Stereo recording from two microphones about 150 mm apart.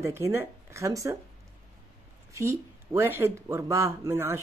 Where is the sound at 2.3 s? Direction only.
20° right (ahead or behind).